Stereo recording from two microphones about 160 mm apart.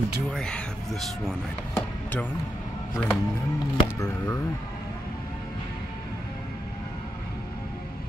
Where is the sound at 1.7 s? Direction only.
10° left (ahead or behind).